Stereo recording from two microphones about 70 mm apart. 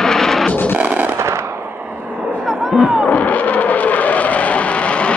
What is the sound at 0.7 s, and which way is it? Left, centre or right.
Fireworks, right.